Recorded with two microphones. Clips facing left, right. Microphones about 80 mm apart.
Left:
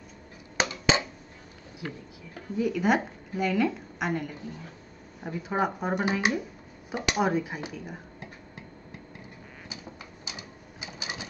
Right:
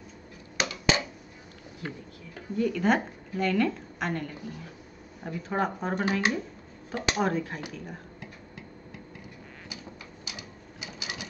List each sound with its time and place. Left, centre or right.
0.6 s a sound: left
2.5 s a woman's voice: centre
10.2 s printer: left